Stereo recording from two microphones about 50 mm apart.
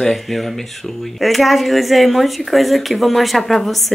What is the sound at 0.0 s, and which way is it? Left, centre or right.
A woman's voice, centre.